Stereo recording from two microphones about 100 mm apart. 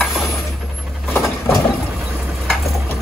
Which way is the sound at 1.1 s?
30° left (ahead or behind).